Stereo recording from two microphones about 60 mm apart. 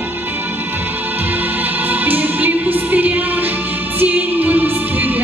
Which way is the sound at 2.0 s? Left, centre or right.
Right.